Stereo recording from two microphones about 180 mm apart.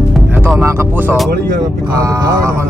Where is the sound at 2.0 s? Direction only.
20° right (ahead or behind).